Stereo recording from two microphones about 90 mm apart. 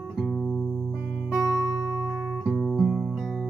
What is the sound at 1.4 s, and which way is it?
Music, 40° right (ahead or behind).